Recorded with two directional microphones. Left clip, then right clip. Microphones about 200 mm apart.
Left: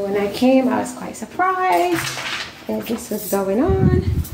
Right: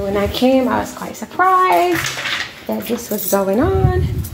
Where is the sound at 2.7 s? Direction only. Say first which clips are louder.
Right 1 dB; 10° right (ahead or behind).